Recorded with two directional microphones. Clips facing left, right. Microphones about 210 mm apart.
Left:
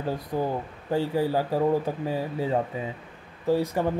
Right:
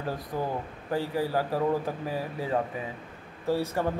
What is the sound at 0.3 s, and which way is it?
Speech, 25° left (ahead or behind).